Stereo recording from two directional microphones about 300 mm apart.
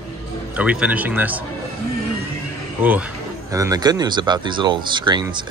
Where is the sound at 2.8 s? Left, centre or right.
Centre.